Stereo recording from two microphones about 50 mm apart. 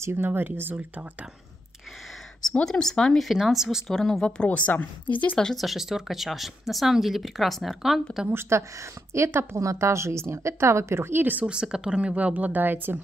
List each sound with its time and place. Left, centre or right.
0.0 s speech: right
2.6 s speech: centre
3.2 s speech: centre
4.5 s a woman's voice: left
5.6 s speech: centre
8.3 s a woman's voice: right
9.6 s a woman's voice: right
11.4 s speech: centre; by 12.9 s right